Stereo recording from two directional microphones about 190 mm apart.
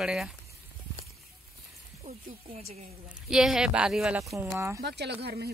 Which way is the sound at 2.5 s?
35° right (ahead or behind).